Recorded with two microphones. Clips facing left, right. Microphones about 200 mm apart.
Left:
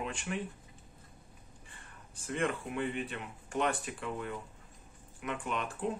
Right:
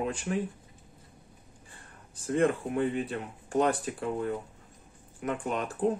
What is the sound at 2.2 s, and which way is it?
Speech, 35° right (ahead or behind).